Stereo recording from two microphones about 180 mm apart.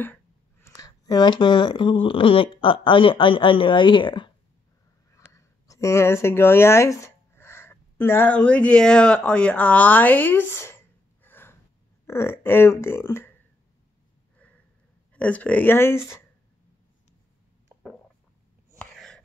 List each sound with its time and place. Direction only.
0.0 s speech: 10° left (ahead or behind); by 4.3 s 25° left (ahead or behind)
5.1 s speech: 15° left (ahead or behind)
15.1 s speech: 10° left (ahead or behind)
18.8 s a sound: 5° left (ahead or behind)